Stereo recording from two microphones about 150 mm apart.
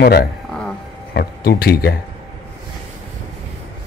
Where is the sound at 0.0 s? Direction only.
85° left.